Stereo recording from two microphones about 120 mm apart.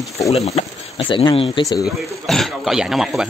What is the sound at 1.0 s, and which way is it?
Speech, 45° left (ahead or behind).